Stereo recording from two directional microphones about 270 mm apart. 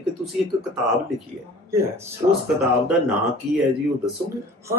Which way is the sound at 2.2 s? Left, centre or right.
Centre.